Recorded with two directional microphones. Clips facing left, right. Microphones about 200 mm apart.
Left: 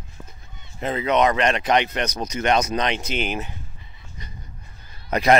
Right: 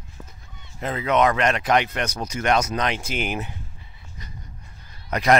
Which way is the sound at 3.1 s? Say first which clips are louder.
Left 1 dB; 10° right (ahead or behind).